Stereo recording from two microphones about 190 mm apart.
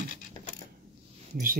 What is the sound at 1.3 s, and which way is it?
Speech, 50° right (ahead or behind).